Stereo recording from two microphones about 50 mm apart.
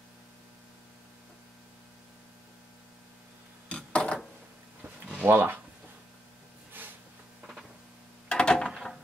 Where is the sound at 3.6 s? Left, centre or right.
Left.